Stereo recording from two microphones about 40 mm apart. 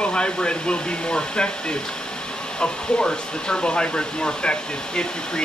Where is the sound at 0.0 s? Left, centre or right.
Left.